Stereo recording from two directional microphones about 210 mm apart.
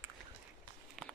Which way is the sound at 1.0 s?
Centre (ahead or behind).